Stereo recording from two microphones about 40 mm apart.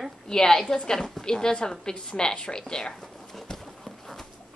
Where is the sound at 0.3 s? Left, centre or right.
Centre.